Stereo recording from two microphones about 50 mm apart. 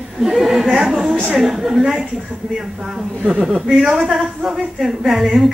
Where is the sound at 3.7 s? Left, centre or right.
Centre.